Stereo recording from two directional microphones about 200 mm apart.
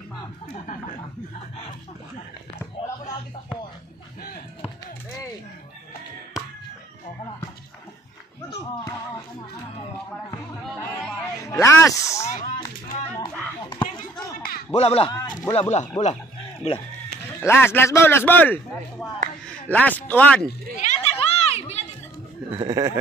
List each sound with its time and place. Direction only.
11.4 s a man's voice: 15° left (ahead or behind)
12.3 s speech: 40° left (ahead or behind)
13.7 s basketball bounce: 5° left (ahead or behind)
14.7 s speech: 30° left (ahead or behind)
16.0 s a man's voice: 15° left (ahead or behind)
17.5 s a man's voice: 10° left (ahead or behind)
20.7 s a sound: 35° left (ahead or behind)
22.5 s speech: 25° right (ahead or behind)